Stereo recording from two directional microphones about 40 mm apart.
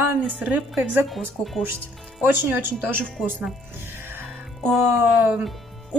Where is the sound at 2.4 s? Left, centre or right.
Right.